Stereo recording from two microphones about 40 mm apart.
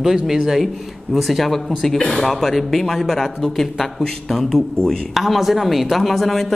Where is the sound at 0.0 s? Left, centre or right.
Centre.